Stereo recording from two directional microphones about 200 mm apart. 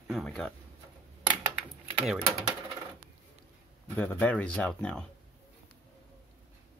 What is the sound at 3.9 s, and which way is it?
Speech, 5° left (ahead or behind).